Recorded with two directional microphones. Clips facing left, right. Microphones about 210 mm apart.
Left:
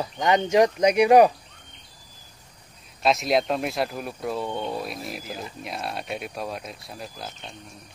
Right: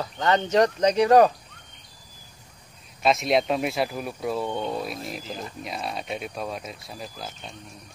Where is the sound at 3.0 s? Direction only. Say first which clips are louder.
Even; centre (ahead or behind).